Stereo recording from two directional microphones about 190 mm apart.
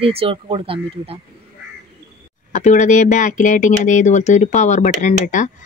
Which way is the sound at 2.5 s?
40° left (ahead or behind).